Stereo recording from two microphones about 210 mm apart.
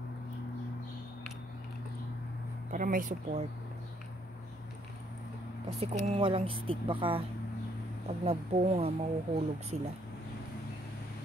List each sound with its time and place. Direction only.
2.7 s speech: 40° right (ahead or behind)
5.7 s speech: 30° right (ahead or behind)
8.3 s speech: 30° right (ahead or behind)